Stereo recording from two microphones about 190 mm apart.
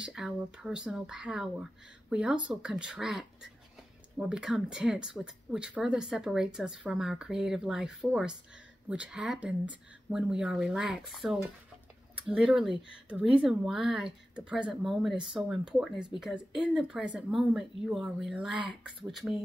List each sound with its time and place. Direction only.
0.0 s speech: 5° right (ahead or behind)
18.6 s speech: 25° right (ahead or behind)